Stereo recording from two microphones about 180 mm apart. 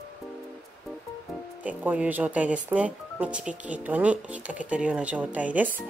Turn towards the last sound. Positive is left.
turn(degrees=-10)  # may be behind; listen again after turning